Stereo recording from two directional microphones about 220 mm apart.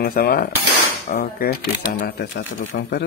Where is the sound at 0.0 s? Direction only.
40° left (ahead or behind).